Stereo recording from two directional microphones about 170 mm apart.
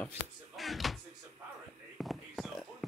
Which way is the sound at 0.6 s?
Centre (ahead or behind).